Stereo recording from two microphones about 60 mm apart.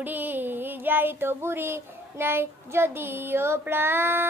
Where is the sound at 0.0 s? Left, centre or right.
Right.